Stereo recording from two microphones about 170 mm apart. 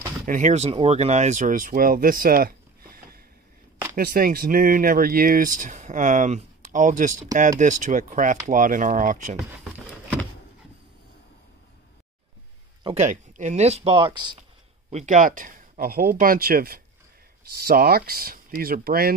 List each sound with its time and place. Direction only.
0.3 s speech: 45° right (ahead or behind)
0.7 s speech: 35° right (ahead or behind)
12.8 s speech: 40° right (ahead or behind)
14.9 s speech: 45° right (ahead or behind); by 19.1 s 60° right (ahead or behind)